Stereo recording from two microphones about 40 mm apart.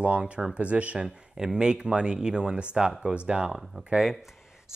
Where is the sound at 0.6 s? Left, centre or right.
Right.